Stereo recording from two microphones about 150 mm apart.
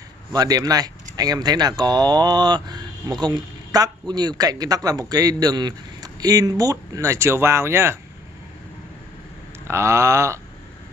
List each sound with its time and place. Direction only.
0.3 s a man's voice: 25° right (ahead or behind)
9.7 s a man's voice: 20° right (ahead or behind)